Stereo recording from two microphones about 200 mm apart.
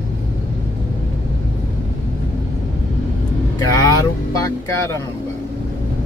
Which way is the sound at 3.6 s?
20° left (ahead or behind).